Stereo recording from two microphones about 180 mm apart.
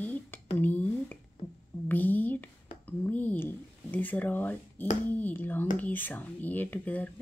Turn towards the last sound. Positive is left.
turn(degrees=10)  # may be behind; listen again after turning